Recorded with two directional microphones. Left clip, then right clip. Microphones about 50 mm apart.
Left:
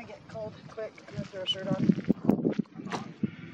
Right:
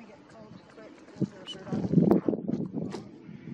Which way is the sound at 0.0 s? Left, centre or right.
Centre.